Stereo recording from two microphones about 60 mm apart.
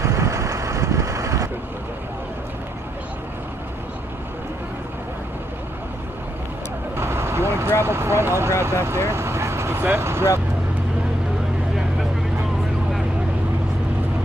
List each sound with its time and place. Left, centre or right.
0.0 s vehicle: right
7.0 s vehicle: right
7.8 s speech: right